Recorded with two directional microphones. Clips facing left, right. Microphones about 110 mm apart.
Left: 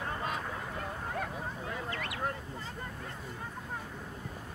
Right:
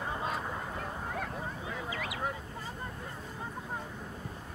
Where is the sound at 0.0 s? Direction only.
5° right (ahead or behind).